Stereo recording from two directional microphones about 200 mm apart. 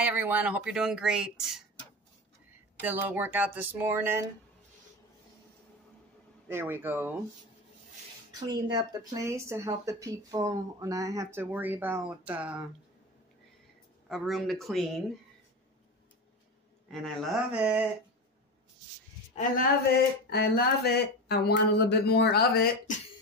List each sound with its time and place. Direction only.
0.0 s speech: 10° right (ahead or behind)
2.8 s speech: 10° right (ahead or behind)
6.5 s speech: 10° right (ahead or behind)
8.3 s speech: 20° right (ahead or behind)
14.0 s speech: centre (ahead or behind)
16.9 s speech: centre (ahead or behind)
20.2 s speech: 55° left (ahead or behind)